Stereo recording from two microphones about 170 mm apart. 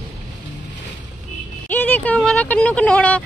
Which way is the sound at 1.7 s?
10° left (ahead or behind).